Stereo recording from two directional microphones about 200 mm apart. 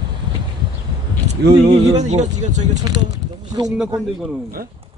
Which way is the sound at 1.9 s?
35° right (ahead or behind).